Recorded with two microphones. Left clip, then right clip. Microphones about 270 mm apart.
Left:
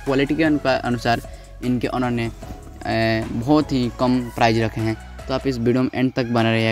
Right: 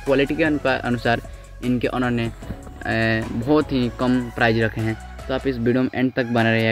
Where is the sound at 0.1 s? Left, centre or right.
Left.